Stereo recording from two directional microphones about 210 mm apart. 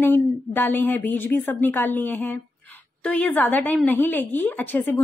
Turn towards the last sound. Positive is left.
turn(degrees=10)  # may be behind; listen again after turning